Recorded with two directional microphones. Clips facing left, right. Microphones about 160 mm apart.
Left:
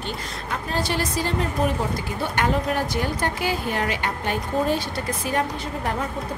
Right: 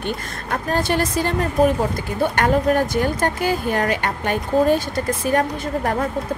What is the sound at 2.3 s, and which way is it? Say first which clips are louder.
Speech: right 5 dB; 50° right (ahead or behind).